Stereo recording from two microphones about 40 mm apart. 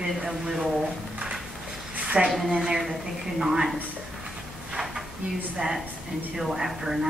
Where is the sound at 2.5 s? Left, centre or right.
Right.